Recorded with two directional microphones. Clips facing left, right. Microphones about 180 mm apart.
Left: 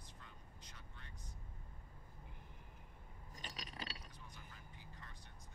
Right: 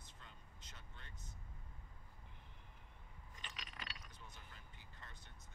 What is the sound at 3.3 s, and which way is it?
Mechanisms, 40° left (ahead or behind).